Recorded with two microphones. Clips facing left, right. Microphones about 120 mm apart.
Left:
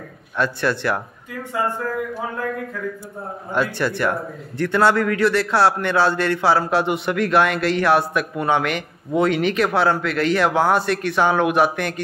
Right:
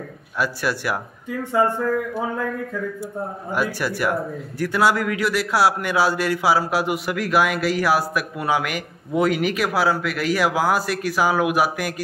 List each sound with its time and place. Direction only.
0.4 s speech: 10° right (ahead or behind)
3.5 s a man's voice: 10° right (ahead or behind)